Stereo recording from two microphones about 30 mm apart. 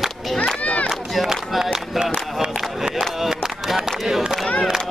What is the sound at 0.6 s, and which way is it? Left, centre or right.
Run, left.